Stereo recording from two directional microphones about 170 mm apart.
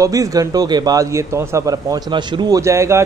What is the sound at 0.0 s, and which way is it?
Speech, 20° right (ahead or behind).